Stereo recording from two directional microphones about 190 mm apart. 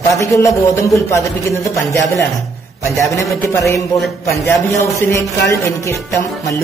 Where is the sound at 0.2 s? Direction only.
15° left (ahead or behind).